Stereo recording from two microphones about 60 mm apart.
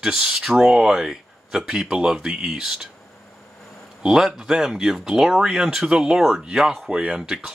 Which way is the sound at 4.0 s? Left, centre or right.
Centre.